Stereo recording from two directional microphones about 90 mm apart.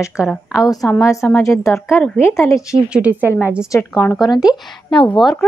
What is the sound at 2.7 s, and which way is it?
Speech, 15° right (ahead or behind).